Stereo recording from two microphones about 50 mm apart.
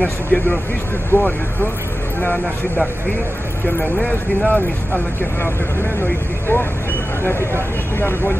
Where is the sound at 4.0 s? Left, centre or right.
Left.